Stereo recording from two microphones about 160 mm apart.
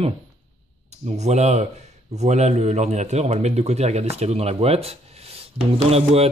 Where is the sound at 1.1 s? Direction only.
45° right (ahead or behind).